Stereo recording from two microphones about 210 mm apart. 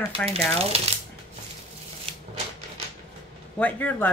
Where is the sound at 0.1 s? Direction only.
30° right (ahead or behind).